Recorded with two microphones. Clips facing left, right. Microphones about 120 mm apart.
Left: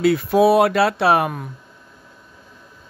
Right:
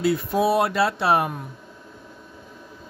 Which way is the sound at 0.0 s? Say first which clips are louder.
Left 6 dB; 75° left (ahead or behind).